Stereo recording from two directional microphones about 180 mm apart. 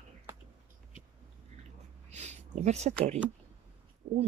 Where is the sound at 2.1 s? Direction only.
40° right (ahead or behind).